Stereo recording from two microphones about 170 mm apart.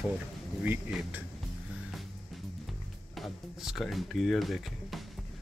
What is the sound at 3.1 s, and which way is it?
Speech, centre (ahead or behind).